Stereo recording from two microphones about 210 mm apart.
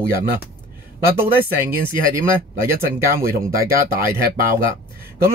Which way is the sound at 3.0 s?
45° right (ahead or behind).